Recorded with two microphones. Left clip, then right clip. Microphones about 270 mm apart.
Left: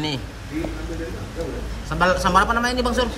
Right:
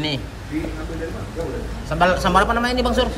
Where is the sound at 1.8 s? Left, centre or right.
Centre.